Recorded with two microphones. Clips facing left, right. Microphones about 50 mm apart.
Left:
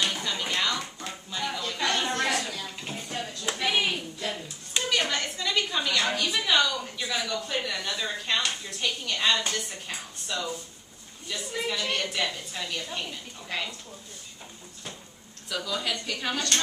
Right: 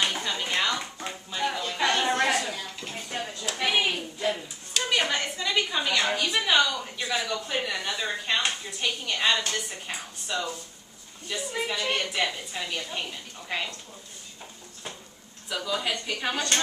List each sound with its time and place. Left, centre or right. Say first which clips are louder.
0.0 s music: right 1 dB; centre
2.3 s a sound: right 2 dB; centre
3.5 s clapping: right 2 dB; centre
4.8 s a sound: right 1 dB; centre
9.5 s music: right 1 dB; centre
11.2 s a woman's voice: right 1 dB; centre
15.5 s a woman's voice: right 1 dB; centre